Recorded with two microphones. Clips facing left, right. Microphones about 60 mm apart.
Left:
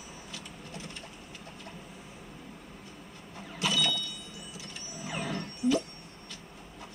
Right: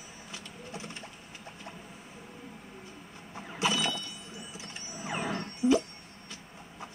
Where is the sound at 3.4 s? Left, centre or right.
Right.